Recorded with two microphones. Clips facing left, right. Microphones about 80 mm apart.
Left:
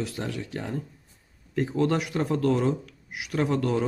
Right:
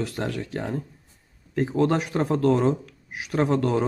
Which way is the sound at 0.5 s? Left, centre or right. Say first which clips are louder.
Right 3 dB; right.